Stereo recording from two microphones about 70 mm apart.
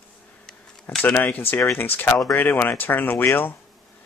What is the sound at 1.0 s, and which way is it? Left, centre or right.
Speech, left.